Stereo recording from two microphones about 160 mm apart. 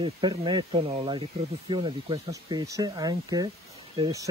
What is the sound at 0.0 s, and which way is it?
Speech, 30° right (ahead or behind).